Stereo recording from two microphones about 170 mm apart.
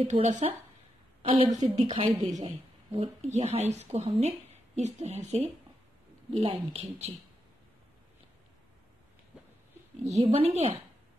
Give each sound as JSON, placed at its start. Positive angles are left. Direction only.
{"t": 0.0, "sound": "a woman's voice", "side_deg": -40}
{"t": 2.1, "sound": "a woman's voice", "side_deg": -25}
{"t": 10.3, "sound": "a woman's voice", "side_deg": -35}